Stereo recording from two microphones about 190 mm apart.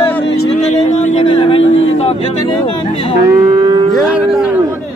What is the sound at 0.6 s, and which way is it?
Speech, 40° left (ahead or behind).